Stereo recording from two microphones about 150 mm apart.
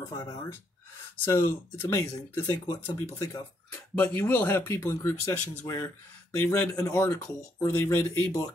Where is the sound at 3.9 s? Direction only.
10° left (ahead or behind).